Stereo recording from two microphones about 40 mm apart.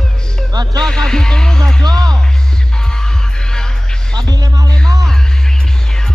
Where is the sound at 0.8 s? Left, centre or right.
Centre.